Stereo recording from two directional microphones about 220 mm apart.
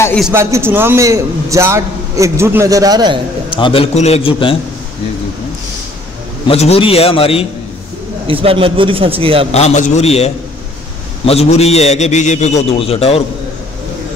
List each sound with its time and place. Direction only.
0.0 s a sound: 5° left (ahead or behind)
0.3 s a man's voice: 10° right (ahead or behind)
3.4 s a man's voice: 25° left (ahead or behind)
6.4 s a man's voice: 25° left (ahead or behind)
8.3 s speech: 25° right (ahead or behind)
9.5 s a man's voice: 30° left (ahead or behind)